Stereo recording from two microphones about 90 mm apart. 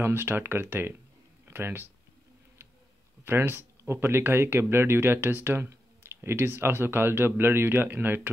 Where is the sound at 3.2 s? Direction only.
25° right (ahead or behind).